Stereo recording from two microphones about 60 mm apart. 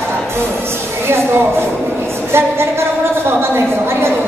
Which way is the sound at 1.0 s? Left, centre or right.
Right.